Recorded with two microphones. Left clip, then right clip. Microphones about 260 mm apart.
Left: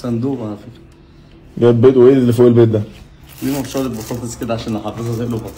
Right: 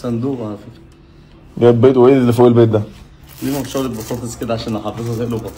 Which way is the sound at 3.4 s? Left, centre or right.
Centre.